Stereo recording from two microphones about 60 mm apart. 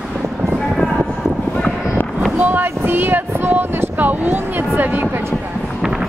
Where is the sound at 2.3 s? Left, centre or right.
Right.